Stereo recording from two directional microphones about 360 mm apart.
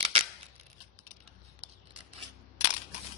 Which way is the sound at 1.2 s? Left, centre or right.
Centre.